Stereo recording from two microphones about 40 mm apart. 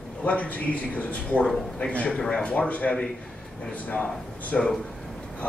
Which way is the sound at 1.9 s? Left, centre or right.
Left.